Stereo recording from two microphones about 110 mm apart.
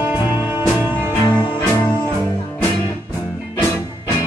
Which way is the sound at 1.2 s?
40° left (ahead or behind).